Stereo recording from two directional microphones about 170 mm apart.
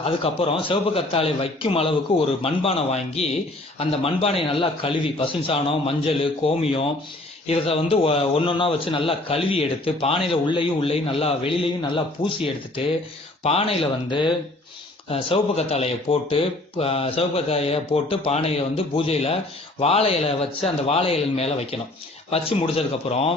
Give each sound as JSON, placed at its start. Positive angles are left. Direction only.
{"t": 0.0, "sound": "speech", "side_deg": 35}